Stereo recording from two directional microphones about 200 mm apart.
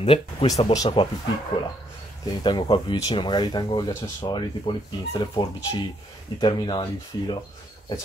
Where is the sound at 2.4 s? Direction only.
25° left (ahead or behind).